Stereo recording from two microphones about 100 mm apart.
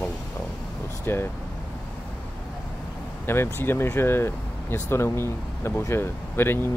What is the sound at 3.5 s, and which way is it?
Speech, 20° left (ahead or behind).